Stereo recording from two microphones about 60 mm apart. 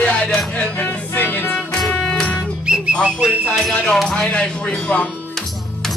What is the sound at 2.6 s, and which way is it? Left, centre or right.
Music, centre.